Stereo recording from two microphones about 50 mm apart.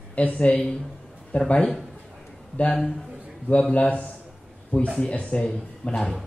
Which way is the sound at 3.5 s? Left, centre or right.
Left.